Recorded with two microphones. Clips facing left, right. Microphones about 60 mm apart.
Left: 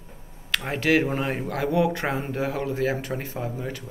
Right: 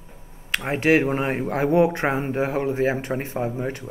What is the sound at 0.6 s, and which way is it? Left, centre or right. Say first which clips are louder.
Speech: right 3 dB; right.